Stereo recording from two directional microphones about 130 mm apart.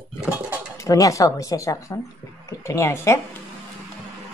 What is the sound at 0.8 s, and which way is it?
Speech, 25° left (ahead or behind).